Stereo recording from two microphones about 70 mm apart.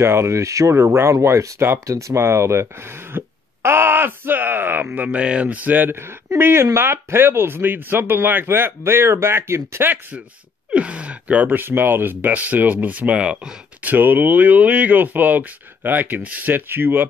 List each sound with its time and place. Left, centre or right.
0.0 s speech: right
4.9 s speech: centre; by 9.8 s right
10.7 s speech: centre
11.6 s speech: right; by 13.6 s centre
13.8 s speech: right